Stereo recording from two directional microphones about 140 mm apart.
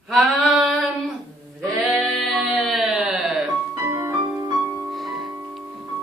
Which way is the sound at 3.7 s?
20° right (ahead or behind).